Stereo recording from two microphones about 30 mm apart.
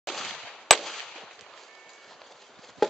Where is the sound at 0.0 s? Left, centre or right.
Centre.